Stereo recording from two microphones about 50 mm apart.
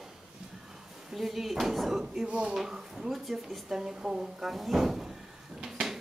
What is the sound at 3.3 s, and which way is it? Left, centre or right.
Speech, centre.